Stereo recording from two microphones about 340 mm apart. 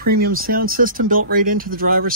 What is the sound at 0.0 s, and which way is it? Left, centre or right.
Speech, right.